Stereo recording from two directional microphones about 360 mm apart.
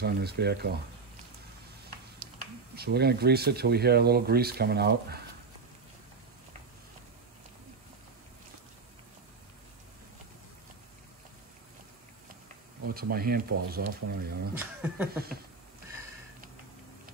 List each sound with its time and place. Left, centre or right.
0.0 s speech: right
1.9 s speech: right
12.9 s speech: right
14.6 s speech: centre